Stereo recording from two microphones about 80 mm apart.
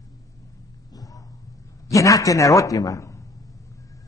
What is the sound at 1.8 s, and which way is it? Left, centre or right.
A man's voice, left.